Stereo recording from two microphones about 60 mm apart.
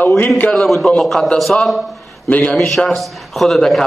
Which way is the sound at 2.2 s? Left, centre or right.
Centre.